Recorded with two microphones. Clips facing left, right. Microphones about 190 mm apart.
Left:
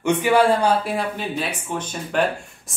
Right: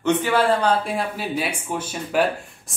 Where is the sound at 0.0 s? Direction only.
15° left (ahead or behind).